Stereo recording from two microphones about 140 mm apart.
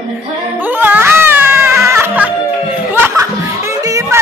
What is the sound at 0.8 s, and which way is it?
Music, 15° right (ahead or behind).